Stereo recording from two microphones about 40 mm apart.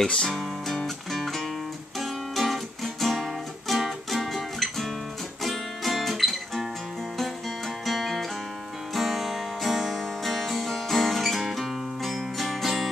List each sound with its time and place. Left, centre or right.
0.0 s music: centre
0.3 s music: centre
5.4 s guitar: centre
7.8 s music: centre